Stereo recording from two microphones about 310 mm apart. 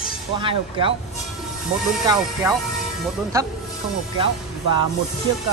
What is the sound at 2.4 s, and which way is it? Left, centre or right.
Speech, centre.